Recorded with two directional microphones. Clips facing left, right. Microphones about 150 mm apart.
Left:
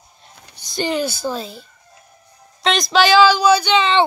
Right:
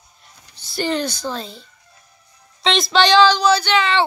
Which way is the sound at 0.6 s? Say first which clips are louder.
Left 1 dB; 15° left (ahead or behind).